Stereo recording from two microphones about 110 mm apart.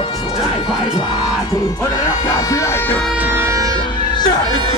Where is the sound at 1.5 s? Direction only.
35° left (ahead or behind); by 3.3 s 15° left (ahead or behind).